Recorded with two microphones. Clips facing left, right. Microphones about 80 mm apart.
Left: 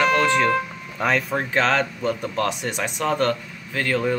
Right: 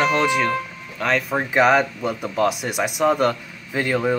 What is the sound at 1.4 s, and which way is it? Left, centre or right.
Speech, centre.